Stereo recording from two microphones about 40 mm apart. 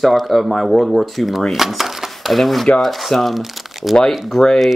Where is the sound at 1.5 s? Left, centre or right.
Centre.